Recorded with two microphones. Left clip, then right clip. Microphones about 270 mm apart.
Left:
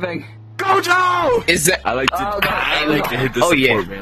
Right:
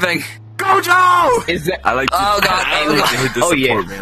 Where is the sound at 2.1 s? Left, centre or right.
Right.